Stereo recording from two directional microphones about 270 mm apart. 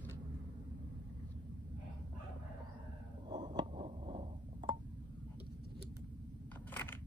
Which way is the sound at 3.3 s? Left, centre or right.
Centre.